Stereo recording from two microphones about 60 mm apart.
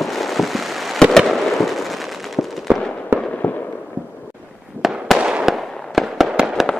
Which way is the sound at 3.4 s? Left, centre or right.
Left.